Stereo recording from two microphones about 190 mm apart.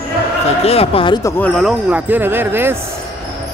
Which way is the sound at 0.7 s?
30° left (ahead or behind).